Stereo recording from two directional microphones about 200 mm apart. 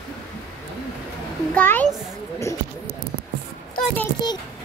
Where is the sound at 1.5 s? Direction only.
10° left (ahead or behind).